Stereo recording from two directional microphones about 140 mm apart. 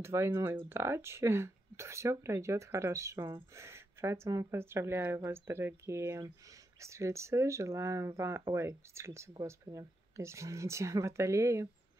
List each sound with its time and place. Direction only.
0.0 s speech: 20° right (ahead or behind)